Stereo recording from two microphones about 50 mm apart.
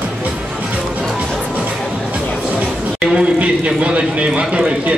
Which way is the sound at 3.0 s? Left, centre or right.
Centre.